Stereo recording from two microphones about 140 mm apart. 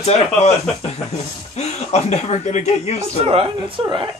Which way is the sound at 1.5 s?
50° left (ahead or behind).